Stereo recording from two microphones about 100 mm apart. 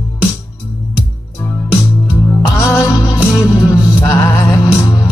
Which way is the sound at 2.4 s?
35° left (ahead or behind).